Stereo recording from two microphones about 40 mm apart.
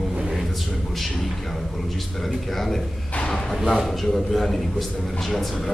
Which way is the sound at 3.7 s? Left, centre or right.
Centre.